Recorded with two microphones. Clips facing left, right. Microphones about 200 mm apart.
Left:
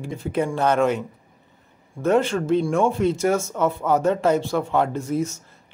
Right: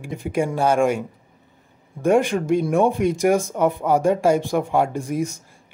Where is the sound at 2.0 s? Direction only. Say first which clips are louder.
Right 2 dB; 15° right (ahead or behind).